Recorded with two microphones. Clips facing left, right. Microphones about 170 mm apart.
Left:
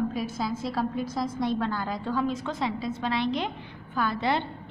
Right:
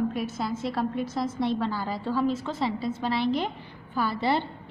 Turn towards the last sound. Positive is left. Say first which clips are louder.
# right 1 dB
turn(degrees=-5)  # may be behind; listen again after turning